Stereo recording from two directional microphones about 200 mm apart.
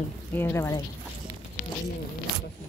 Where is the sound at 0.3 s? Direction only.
10° left (ahead or behind).